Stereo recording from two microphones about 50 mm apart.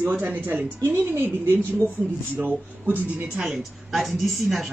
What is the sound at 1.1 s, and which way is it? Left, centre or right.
A woman's voice, right.